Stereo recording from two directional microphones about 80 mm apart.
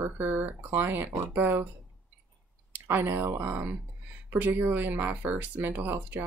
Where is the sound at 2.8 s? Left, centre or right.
Right.